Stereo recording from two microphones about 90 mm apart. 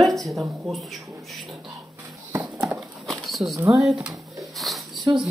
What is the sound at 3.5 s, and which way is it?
Speech, 35° right (ahead or behind).